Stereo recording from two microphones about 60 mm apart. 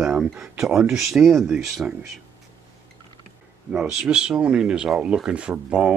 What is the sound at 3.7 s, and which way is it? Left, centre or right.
Speech, centre.